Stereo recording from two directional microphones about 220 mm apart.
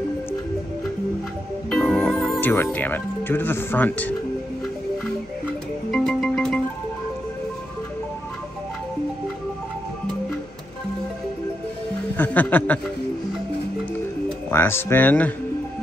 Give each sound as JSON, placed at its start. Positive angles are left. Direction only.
{"t": 1.7, "sound": "music", "side_deg": 5}
{"t": 2.5, "sound": "speech", "side_deg": 10}
{"t": 5.9, "sound": "music", "side_deg": 5}
{"t": 12.2, "sound": "speech", "side_deg": 5}
{"t": 14.5, "sound": "speech", "side_deg": 10}